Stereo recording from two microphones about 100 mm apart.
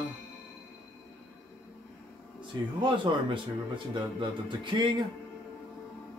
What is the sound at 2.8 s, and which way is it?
Speech, 55° right (ahead or behind).